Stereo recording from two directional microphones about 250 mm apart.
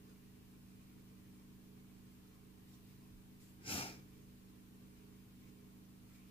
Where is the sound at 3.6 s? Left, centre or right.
Left.